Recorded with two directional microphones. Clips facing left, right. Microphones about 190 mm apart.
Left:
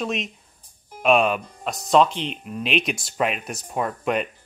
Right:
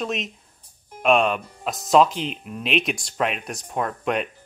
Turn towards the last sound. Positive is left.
turn(degrees=0)  # may be behind; listen again after turning